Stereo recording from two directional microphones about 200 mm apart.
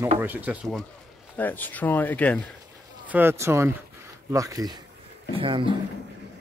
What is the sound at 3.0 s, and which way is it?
Speech, 10° right (ahead or behind).